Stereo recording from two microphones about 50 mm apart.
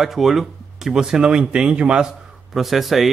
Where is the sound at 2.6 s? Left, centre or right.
Centre.